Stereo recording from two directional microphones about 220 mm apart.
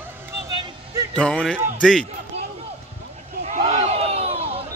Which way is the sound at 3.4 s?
30° right (ahead or behind).